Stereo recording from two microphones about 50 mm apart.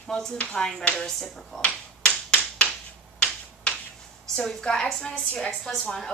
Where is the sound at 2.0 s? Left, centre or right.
Centre.